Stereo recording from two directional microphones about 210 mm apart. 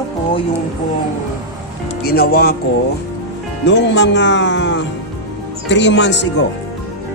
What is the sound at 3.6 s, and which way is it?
Speech, 55° left (ahead or behind).